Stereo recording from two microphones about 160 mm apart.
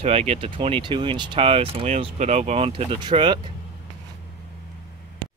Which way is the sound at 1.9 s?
45° right (ahead or behind).